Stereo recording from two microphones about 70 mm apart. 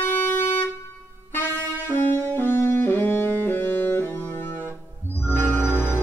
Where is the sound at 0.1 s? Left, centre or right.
Left.